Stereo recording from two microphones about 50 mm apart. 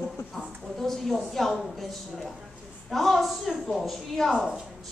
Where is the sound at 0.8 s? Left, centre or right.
Centre.